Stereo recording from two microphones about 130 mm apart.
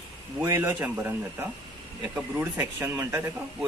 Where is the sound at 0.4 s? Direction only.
15° right (ahead or behind).